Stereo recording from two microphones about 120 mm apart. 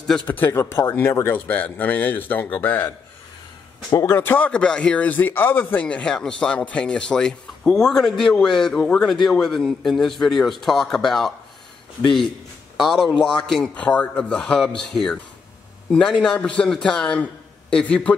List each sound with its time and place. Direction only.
0.0 s speech: 5° left (ahead or behind)
0.4 s speech: 20° left (ahead or behind)
3.9 s speech: 20° left (ahead or behind); by 11.3 s centre (ahead or behind)
12.8 s speech: centre (ahead or behind)